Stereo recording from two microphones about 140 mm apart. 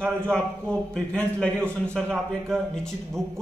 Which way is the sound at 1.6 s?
15° right (ahead or behind).